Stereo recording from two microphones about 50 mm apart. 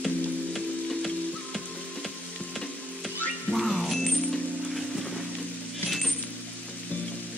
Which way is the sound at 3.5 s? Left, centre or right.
Centre.